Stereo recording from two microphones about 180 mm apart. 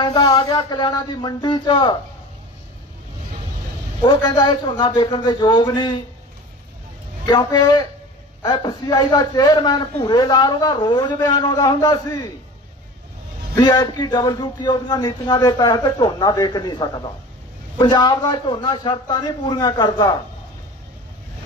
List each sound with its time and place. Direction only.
0.0 s speech: 25° left (ahead or behind)
4.0 s speech: 20° left (ahead or behind)
7.2 s speech: 25° left (ahead or behind)
13.6 s speech: 25° left (ahead or behind)